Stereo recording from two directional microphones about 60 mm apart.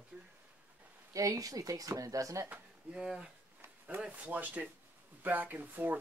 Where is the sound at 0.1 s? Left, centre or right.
Right.